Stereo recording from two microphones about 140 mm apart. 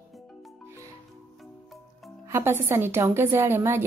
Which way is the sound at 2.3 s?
20° right (ahead or behind).